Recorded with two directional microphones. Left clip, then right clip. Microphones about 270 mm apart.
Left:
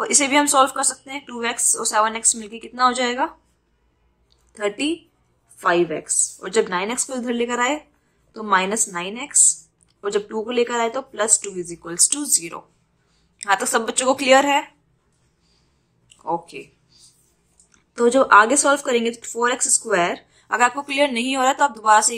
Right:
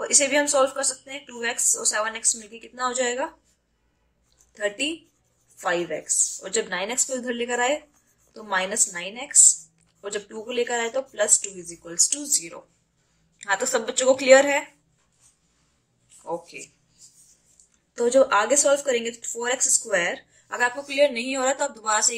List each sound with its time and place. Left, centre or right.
0.0 s speech: centre
4.6 s a woman's voice: left
16.3 s a woman's voice: centre
17.6 s speech: centre